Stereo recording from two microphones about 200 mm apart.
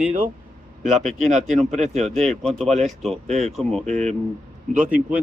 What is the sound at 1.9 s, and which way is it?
Speech, centre (ahead or behind).